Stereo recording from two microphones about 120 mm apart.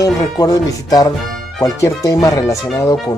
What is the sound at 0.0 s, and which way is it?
Speech, 30° left (ahead or behind).